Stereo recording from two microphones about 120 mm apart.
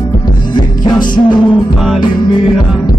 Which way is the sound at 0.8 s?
35° left (ahead or behind).